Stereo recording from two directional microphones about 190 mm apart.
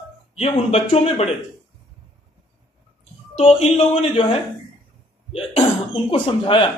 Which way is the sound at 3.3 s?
30° left (ahead or behind).